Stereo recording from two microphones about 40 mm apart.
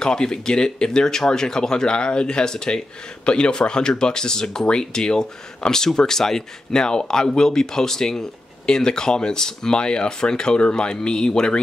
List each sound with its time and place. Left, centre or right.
0.0 s speech: centre